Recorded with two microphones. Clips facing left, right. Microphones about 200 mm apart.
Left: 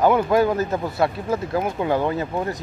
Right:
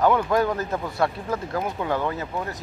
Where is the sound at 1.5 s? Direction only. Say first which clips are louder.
Left 4 dB; 20° left (ahead or behind).